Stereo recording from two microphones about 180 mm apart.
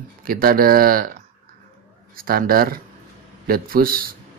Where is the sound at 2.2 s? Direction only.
55° right (ahead or behind).